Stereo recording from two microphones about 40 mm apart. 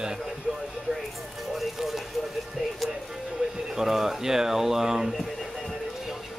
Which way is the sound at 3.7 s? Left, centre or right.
Centre.